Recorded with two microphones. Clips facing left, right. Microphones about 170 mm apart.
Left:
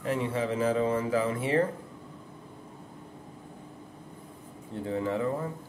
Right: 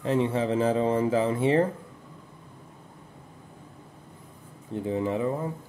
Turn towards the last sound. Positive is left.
turn(degrees=-20)  # may be behind; listen again after turning